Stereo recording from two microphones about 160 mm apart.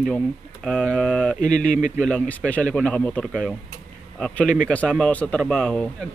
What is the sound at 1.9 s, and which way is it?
Speech, 5° left (ahead or behind).